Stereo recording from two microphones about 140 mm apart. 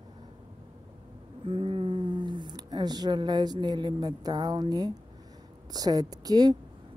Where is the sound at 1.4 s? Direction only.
40° right (ahead or behind).